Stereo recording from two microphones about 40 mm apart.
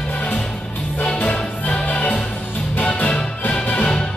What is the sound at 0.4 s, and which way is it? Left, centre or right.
Music, left.